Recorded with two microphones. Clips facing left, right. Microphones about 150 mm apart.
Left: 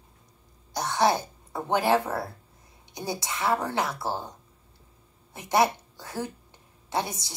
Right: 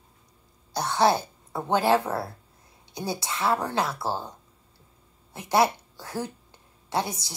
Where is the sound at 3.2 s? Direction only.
20° left (ahead or behind).